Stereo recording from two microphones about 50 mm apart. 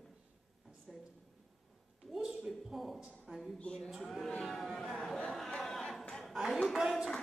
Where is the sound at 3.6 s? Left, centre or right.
Centre.